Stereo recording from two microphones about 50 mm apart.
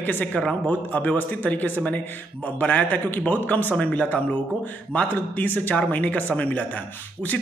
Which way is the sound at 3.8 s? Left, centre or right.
Left.